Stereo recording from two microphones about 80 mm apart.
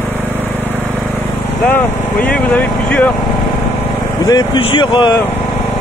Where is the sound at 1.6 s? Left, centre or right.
Left.